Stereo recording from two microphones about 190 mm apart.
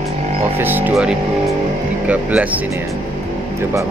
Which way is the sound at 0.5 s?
10° right (ahead or behind).